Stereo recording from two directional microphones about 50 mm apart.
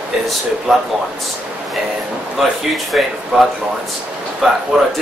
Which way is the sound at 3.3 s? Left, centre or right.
Right.